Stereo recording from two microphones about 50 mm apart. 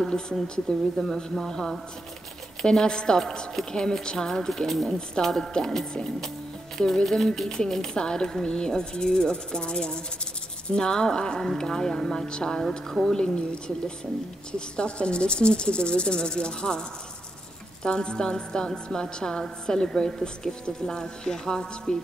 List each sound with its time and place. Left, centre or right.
0.0 s a woman's voice: centre
12.9 s speech: centre
14.8 s speech: left
17.8 s a woman's voice: centre